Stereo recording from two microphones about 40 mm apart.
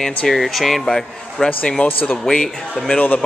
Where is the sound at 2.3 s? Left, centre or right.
Left.